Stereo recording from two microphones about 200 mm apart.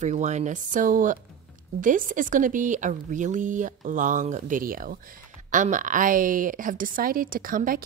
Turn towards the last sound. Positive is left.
turn(degrees=-45)  # may be behind; listen again after turning